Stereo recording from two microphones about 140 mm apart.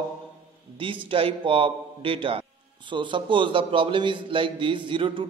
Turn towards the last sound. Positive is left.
turn(degrees=-35)  # may be behind; listen again after turning